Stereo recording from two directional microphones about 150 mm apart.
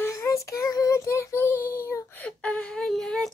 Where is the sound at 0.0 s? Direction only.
20° left (ahead or behind).